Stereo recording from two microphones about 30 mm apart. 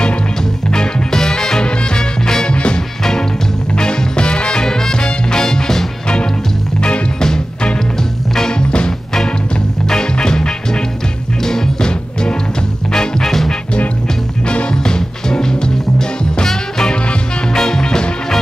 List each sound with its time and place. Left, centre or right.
0.7 s music: left
1.6 s swing music: left
2.5 s music: left
3.0 s music: centre
7.2 s music: left
9.8 s music: left
13.2 s music: centre
14.7 s music: left
17.5 s music: left